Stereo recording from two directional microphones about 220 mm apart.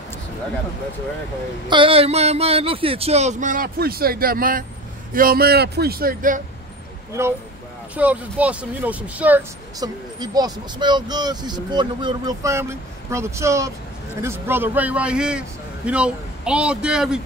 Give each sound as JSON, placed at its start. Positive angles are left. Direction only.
{"t": 1.7, "sound": "a man's voice", "side_deg": -25}
{"t": 7.9, "sound": "speech", "side_deg": -5}
{"t": 10.1, "sound": "a man's voice", "side_deg": -20}